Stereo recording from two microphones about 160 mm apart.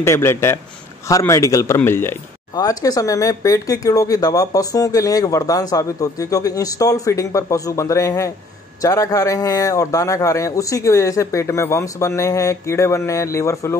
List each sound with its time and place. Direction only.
0.0 s a man's voice: 15° left (ahead or behind)